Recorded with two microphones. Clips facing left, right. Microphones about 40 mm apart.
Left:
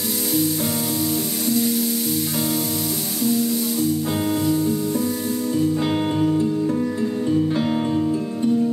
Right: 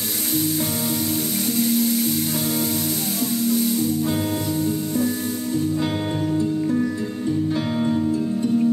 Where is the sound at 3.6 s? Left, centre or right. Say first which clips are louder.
Right 2 dB; left.